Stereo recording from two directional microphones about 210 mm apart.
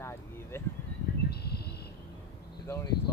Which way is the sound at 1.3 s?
50° left (ahead or behind).